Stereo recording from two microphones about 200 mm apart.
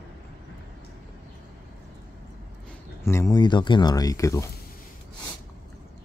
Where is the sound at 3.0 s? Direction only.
15° left (ahead or behind).